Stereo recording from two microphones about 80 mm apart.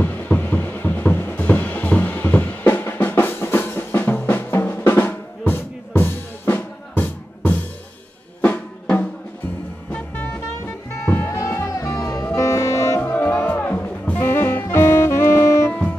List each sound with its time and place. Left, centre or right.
0.0 s music: left
8.4 s drum: centre
9.8 s music: left
13.0 s music: left
14.3 s saxophone: left